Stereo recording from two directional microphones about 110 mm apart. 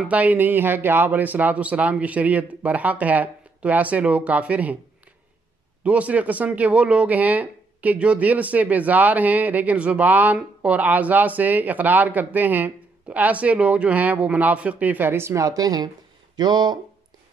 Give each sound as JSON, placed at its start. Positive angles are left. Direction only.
{"t": 0.1, "sound": "speech", "side_deg": -15}
{"t": 5.9, "sound": "speech", "side_deg": -10}